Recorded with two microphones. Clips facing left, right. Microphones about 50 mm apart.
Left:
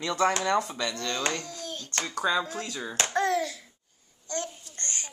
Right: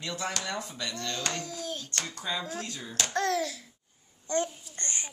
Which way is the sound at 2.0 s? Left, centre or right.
Left.